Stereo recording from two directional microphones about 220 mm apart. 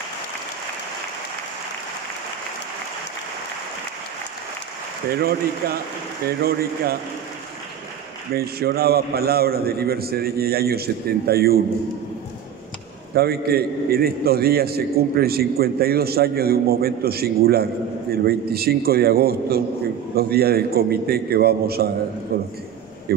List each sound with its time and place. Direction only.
5.1 s a man's voice: 45° right (ahead or behind)
8.3 s a man's voice: 45° right (ahead or behind)
13.1 s a man's voice: 45° right (ahead or behind)